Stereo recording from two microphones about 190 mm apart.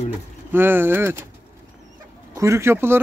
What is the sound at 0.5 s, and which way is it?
Speech, 10° right (ahead or behind).